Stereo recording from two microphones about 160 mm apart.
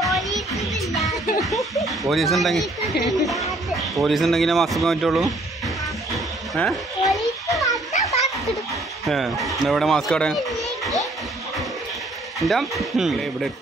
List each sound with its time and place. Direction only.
0.0 s music: centre (ahead or behind)
1.4 s speech: centre (ahead or behind)
6.5 s children playing: centre (ahead or behind)
7.9 s children playing: 45° left (ahead or behind)
9.0 s speech: centre (ahead or behind)
12.4 s speech: centre (ahead or behind)